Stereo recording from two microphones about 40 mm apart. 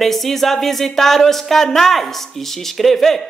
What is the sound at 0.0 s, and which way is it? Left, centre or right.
Speech, centre.